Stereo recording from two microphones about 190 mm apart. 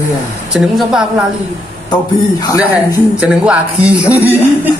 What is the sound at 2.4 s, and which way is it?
Speech, 20° left (ahead or behind).